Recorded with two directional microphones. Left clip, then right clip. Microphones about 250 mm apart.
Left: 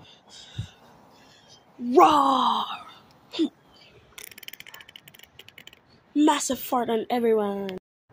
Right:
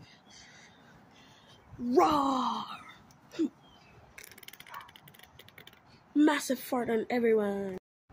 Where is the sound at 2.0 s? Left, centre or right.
Centre.